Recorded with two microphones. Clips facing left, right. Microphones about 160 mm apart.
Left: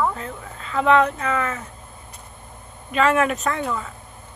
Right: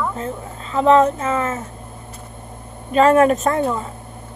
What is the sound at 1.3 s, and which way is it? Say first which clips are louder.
Speech: right 3 dB; 25° right (ahead or behind).